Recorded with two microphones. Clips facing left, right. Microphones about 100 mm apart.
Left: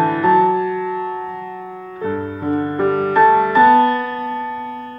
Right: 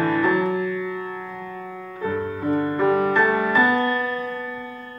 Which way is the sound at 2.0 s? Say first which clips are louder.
Left 3 dB; 30° left (ahead or behind).